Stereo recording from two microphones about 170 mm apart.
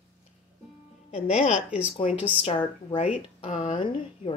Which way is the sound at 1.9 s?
35° left (ahead or behind).